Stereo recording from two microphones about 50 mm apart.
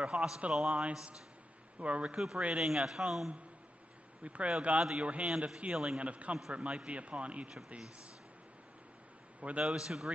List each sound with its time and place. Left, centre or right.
0.0 s speech: centre
2.1 s speech: centre
4.2 s speech: right
9.4 s speech: right
9.8 s speech: centre